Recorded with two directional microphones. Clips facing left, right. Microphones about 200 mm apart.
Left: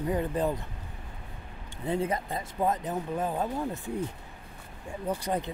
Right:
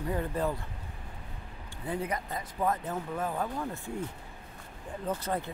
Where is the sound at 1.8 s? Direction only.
25° left (ahead or behind).